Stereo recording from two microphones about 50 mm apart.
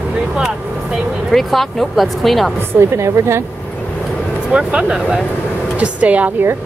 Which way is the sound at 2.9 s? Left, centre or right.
Right.